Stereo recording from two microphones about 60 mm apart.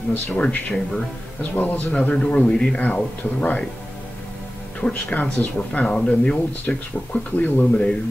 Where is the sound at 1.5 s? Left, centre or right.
Left.